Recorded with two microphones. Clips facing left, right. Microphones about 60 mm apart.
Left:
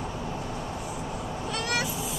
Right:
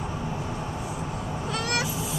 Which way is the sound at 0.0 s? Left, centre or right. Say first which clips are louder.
Right 2 dB; centre.